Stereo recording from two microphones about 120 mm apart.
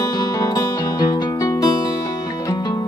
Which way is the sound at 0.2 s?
35° left (ahead or behind).